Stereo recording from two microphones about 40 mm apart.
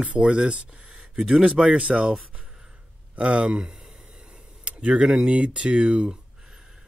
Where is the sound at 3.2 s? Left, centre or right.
Right.